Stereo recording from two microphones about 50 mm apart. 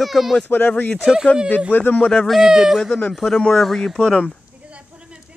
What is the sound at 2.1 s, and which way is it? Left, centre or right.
Speech, centre.